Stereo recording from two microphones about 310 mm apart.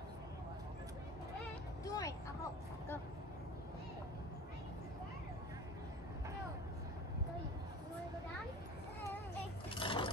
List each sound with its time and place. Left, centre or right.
1.9 s vehicle: centre
9.7 s vehicle: centre